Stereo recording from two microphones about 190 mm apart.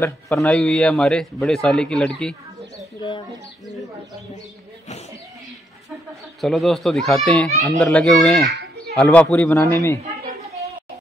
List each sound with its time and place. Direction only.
0.0 s a man's voice: 10° left (ahead or behind)
3.0 s speech: 25° left (ahead or behind)
6.4 s a man's voice: centre (ahead or behind)
8.5 s a sound: 65° right (ahead or behind)
8.9 s speech: 5° left (ahead or behind)